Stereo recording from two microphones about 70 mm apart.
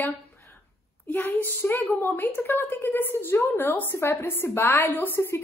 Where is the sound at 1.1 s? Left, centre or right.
Left.